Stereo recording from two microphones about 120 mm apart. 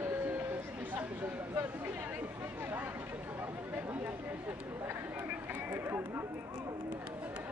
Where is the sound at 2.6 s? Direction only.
15° right (ahead or behind).